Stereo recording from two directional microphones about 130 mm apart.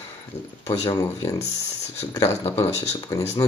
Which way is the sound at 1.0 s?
20° left (ahead or behind).